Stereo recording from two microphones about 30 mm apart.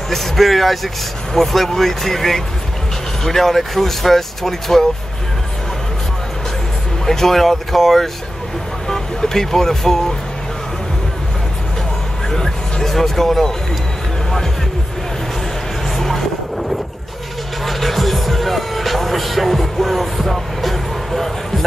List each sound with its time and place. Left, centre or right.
0.1 s speech: centre
7.1 s speech: centre
12.4 s vehicle: left
12.8 s speech: centre
16.0 s music: centre
17.6 s music: centre